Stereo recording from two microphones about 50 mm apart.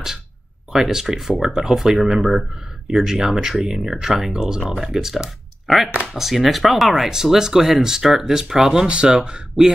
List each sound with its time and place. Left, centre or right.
0.7 s speech: centre